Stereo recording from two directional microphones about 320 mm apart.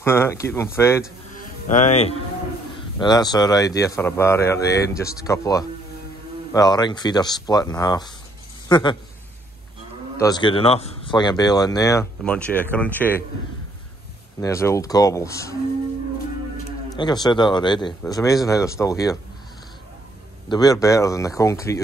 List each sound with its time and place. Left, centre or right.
0.0 s speech: centre
1.7 s speech: left
10.1 s speech: centre
14.4 s speech: centre
16.9 s speech: centre
20.4 s speech: centre